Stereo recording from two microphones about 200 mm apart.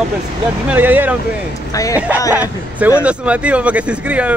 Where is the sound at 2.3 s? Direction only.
10° right (ahead or behind).